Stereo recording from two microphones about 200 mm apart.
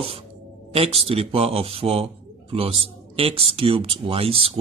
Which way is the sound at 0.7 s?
30° right (ahead or behind).